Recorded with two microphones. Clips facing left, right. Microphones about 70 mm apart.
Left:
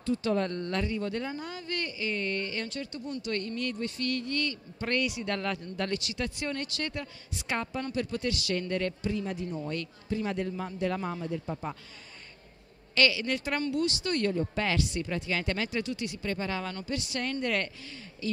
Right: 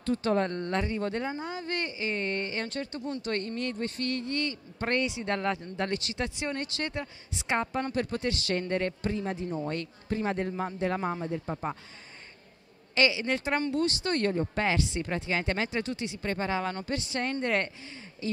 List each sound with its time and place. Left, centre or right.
0.0 s speech: right
7.8 s speech: right
12.9 s speech: right